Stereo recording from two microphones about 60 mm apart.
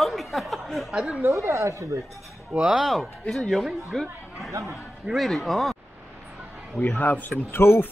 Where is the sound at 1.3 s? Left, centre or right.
Right.